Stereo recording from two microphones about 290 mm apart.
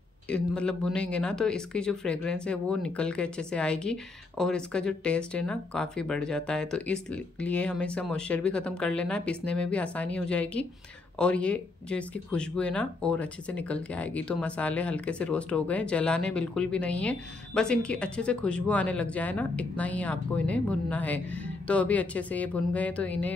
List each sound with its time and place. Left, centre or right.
0.3 s speech: centre